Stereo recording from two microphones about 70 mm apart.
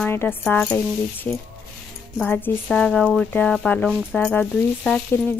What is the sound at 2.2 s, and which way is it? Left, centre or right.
Speech, left.